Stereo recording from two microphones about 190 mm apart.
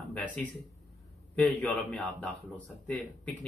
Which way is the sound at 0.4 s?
5° left (ahead or behind).